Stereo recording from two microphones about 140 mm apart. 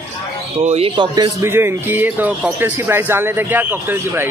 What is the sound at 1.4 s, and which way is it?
Speech, 15° right (ahead or behind).